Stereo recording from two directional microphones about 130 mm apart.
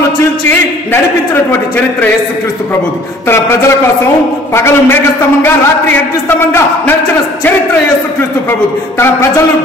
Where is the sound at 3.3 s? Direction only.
20° left (ahead or behind).